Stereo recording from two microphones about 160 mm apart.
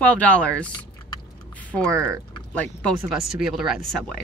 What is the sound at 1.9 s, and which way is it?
Speech, 20° right (ahead or behind).